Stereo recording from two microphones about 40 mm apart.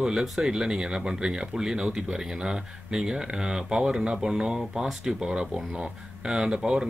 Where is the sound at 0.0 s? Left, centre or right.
Centre.